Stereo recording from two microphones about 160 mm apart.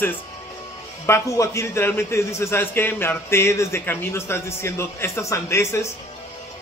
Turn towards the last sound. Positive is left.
turn(degrees=15)  # may be behind; listen again after turning